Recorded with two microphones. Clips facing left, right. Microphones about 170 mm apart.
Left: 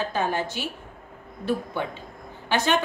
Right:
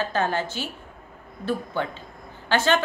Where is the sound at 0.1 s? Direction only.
15° left (ahead or behind).